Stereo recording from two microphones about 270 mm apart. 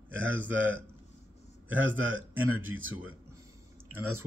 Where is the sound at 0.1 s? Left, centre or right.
Right.